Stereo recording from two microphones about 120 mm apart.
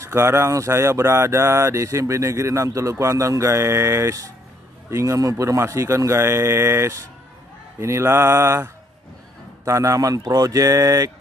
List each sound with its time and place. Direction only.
0.0 s speech: 20° right (ahead or behind)
9.7 s speech: 25° right (ahead or behind)